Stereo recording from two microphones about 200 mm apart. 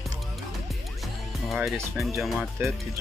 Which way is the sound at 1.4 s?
Centre (ahead or behind).